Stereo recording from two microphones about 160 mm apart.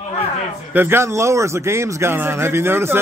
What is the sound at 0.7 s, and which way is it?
A man's voice, 15° right (ahead or behind).